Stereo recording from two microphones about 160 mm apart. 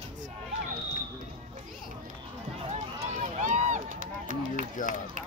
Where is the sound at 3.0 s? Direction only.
50° right (ahead or behind).